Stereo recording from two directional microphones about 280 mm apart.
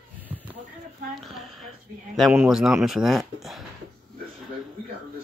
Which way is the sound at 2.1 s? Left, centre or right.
Centre.